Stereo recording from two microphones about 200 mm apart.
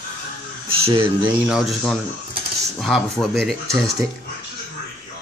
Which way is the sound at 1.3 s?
5° right (ahead or behind).